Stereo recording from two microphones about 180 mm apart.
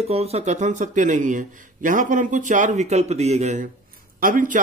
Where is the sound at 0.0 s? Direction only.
35° right (ahead or behind).